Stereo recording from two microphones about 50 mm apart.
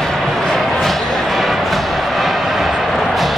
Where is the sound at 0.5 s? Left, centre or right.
Centre.